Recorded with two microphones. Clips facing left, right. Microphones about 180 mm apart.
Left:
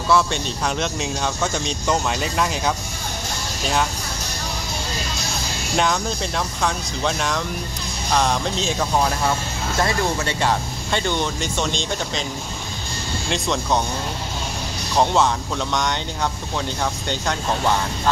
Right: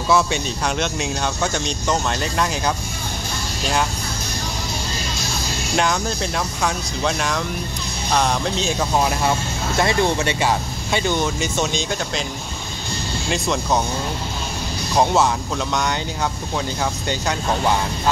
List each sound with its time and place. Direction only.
0.1 s speech: 5° right (ahead or behind)
5.8 s speech: centre (ahead or behind)
9.8 s speech: 15° right (ahead or behind)
13.3 s speech: 5° right (ahead or behind)
15.0 s speech: 5° right (ahead or behind)
17.1 s speech: 10° right (ahead or behind)